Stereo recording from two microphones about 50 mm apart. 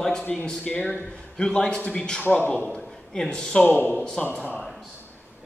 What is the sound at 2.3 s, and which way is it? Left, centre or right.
Speech, left.